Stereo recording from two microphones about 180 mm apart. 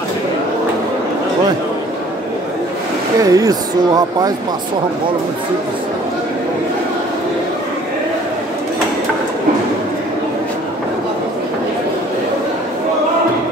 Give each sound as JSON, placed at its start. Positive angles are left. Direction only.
{"t": 3.2, "sound": "speech", "side_deg": -20}